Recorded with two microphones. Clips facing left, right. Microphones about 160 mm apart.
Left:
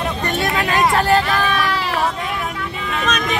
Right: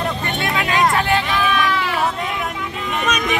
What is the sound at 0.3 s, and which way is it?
Vehicle, 40° left (ahead or behind).